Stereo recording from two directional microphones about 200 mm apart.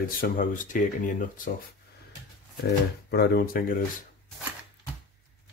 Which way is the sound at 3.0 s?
50° left (ahead or behind).